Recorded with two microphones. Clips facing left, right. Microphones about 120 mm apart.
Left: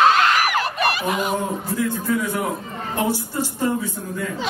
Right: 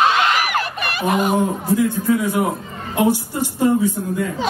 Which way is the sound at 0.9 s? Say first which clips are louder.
Right 4 dB; 50° right (ahead or behind).